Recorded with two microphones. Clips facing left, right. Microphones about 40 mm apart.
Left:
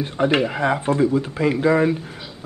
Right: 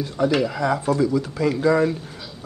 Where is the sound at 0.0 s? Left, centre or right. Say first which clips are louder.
Left 1 dB; left.